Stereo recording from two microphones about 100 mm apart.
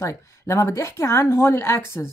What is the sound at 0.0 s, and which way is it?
Speech, 30° left (ahead or behind).